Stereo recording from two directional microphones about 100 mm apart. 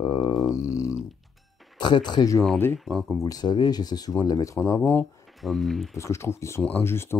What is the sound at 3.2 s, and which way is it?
Speech, 40° left (ahead or behind).